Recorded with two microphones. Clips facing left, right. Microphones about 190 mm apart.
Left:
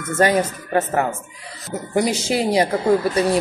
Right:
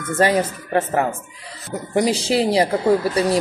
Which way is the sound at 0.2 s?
30° right (ahead or behind).